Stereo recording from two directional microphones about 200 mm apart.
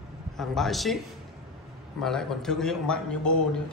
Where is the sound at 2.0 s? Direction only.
5° left (ahead or behind).